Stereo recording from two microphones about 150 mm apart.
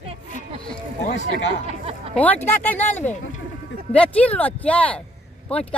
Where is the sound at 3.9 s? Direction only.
10° left (ahead or behind).